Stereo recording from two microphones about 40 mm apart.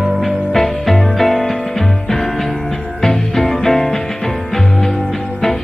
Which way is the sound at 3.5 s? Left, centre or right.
Centre.